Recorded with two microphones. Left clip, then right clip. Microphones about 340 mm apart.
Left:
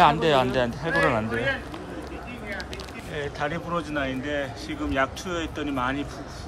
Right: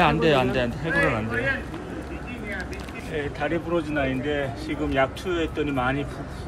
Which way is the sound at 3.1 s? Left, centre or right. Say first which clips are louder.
Right 2 dB; centre.